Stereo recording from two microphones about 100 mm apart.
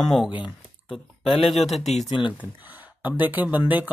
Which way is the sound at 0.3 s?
15° right (ahead or behind).